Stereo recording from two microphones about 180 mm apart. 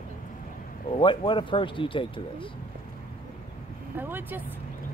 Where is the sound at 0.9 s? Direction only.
30° left (ahead or behind).